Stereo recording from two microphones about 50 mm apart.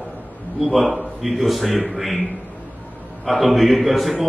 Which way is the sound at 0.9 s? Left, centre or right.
Centre.